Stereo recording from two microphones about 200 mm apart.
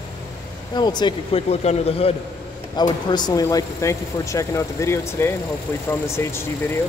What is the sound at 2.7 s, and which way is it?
Speech, 20° left (ahead or behind).